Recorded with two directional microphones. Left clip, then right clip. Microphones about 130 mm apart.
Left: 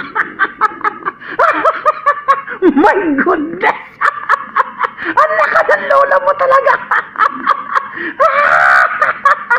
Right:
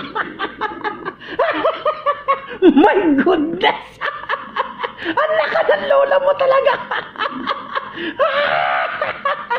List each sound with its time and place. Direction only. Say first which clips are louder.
0.6 s snicker: left 9 dB; 15° right (ahead or behind)
1.7 s snicker: left 6 dB; centre (ahead or behind)
2.6 s a sound: even; 20° right (ahead or behind)
8.2 s wail: left 6 dB; 20° right (ahead or behind)
8.5 s fowl: left 9 dB; 5° right (ahead or behind)